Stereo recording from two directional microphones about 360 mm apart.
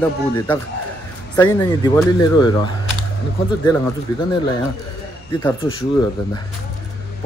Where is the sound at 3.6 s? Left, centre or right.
Centre.